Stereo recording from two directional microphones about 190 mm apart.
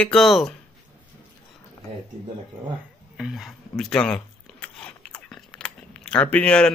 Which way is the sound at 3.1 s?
Centre (ahead or behind).